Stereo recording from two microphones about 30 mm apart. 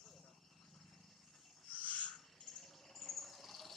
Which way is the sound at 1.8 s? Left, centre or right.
Left.